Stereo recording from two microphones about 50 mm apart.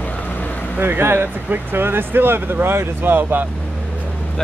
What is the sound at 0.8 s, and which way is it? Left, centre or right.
Speech, right.